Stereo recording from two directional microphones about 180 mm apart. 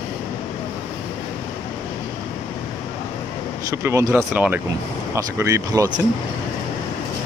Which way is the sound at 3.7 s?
15° right (ahead or behind).